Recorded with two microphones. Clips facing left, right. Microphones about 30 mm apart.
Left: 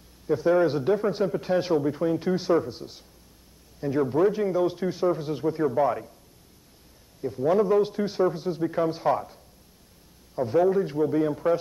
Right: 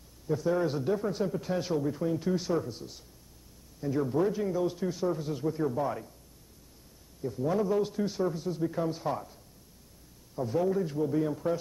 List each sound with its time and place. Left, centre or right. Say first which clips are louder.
0.3 s a man's voice: left 7 dB; left
7.2 s a man's voice: left 7 dB; left
10.7 s a man's voice: left 5 dB; left